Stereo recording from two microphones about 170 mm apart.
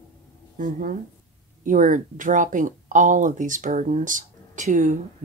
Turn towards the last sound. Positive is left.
turn(degrees=-50)  # may be behind; listen again after turning